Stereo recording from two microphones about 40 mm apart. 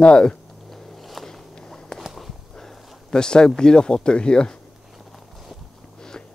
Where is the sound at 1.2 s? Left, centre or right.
Centre.